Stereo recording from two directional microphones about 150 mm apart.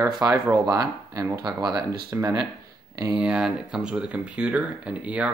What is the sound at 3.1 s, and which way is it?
Speech, 5° right (ahead or behind).